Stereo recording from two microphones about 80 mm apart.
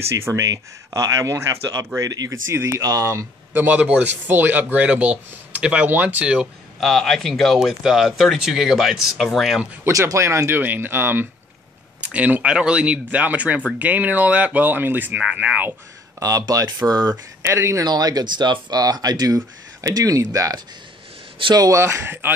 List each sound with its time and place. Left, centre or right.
0.1 s speech: right
3.5 s speech: right
6.8 s speech: centre
9.8 s speech: right
12.0 s speech: centre
16.2 s speech: right
17.4 s speech: right
17.8 s speech: right
21.8 s speech: right